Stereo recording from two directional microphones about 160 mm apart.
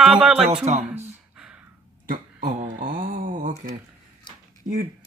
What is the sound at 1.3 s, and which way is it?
Gasp, 5° right (ahead or behind).